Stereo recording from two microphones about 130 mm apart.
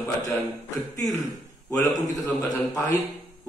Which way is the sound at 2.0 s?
30° left (ahead or behind).